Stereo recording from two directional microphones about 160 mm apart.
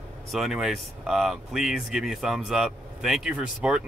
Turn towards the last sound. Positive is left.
turn(degrees=-5)  # may be behind; listen again after turning